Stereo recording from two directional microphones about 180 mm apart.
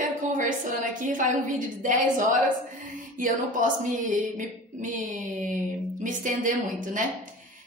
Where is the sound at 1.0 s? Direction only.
45° right (ahead or behind).